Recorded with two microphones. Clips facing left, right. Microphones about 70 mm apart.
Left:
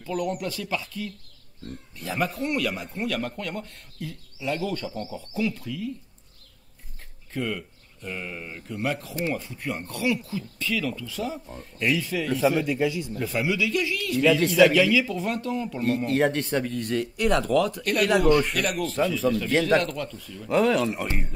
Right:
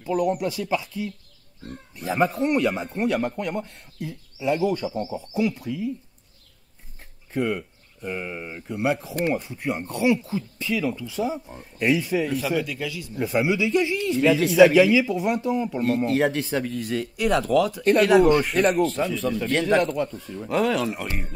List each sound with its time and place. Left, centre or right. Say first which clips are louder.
0.3 s speech: right 5 dB; centre
7.3 s speech: right 5 dB; centre
12.4 s speech: left 3 dB; left
13.1 s speech: right 4 dB; right
14.2 s speech: right 3 dB; centre
14.7 s speech: right 4 dB; centre
15.8 s speech: even; centre
17.8 s speech: right 7 dB; right
20.4 s speech: left 1 dB; centre